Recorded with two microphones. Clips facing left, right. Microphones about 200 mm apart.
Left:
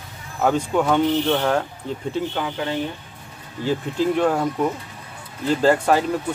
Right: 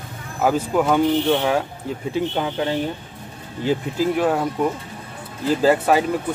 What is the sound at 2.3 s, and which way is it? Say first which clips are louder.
Speech: right 3 dB; 25° right (ahead or behind).